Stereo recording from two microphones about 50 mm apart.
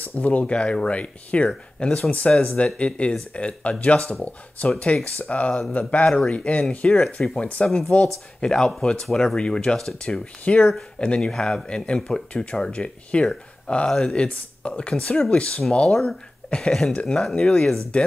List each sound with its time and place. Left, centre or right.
0.2 s speech: left
2.0 s speech: left
4.1 s speech: left
8.4 s speech: centre
15.9 s speech: centre
16.4 s speech: centre